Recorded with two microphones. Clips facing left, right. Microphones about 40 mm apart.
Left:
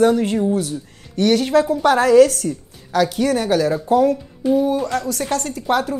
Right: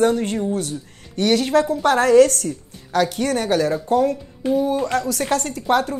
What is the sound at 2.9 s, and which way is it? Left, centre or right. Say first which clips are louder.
Speech: left 1 dB; centre.